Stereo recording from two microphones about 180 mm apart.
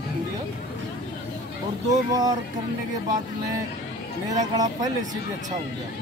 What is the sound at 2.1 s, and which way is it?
Speech, 20° right (ahead or behind).